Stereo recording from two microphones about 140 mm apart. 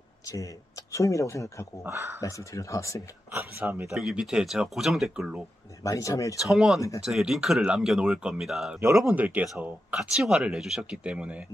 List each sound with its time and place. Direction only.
0.2 s a sound: 25° left (ahead or behind)
0.9 s speech: 20° left (ahead or behind)
1.8 s speech: 15° right (ahead or behind)
2.1 s speech: 25° left (ahead or behind)
3.3 s speech: 15° right (ahead or behind)
3.9 s speech: 5° right (ahead or behind)
5.9 s speech: 25° left (ahead or behind)
6.4 s speech: centre (ahead or behind)